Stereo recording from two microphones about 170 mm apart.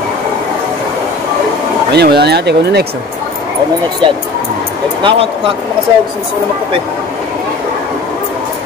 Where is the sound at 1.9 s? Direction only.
75° right (ahead or behind).